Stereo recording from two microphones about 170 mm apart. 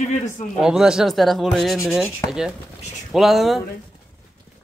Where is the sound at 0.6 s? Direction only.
5° right (ahead or behind).